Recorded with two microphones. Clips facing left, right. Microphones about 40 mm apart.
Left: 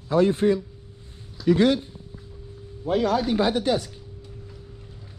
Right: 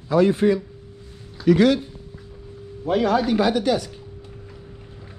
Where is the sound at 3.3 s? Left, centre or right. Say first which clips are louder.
Right 2 dB; right.